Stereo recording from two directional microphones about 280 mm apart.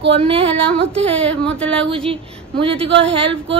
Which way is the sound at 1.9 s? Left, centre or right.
Centre.